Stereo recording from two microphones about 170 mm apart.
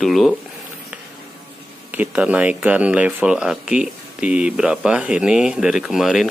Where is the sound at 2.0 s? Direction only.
5° right (ahead or behind).